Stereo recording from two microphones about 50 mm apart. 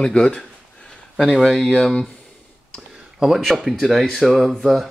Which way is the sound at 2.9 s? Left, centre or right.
Centre.